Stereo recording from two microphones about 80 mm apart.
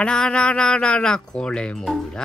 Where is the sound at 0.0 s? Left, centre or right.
Centre.